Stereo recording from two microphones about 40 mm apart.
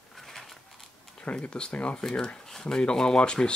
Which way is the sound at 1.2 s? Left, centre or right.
Left.